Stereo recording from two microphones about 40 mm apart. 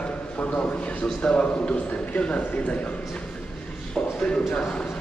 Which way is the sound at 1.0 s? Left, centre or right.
Left.